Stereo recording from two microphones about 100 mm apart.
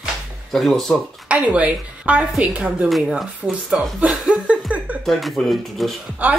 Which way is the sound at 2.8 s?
Centre (ahead or behind).